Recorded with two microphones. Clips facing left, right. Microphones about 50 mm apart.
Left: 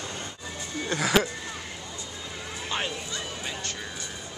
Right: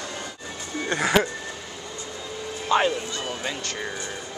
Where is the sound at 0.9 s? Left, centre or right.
Right.